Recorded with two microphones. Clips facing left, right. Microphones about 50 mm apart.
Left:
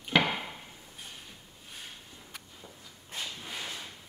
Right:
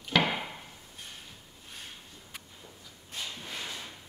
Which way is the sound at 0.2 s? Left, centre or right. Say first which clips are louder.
Right 1 dB; centre.